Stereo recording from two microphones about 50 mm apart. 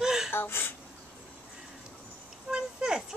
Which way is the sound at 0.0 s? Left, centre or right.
Centre.